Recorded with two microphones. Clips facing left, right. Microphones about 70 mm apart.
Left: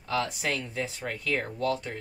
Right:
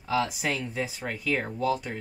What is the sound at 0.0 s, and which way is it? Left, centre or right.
Speech, centre.